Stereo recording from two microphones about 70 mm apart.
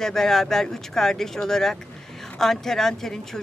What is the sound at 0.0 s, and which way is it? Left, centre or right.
A woman's voice, centre.